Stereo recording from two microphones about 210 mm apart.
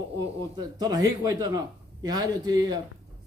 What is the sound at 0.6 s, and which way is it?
A man's voice, 20° right (ahead or behind).